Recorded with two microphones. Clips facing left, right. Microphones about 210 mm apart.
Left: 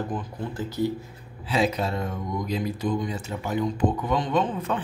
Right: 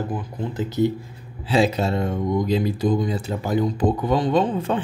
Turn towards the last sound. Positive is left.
turn(degrees=-30)  # may be behind; listen again after turning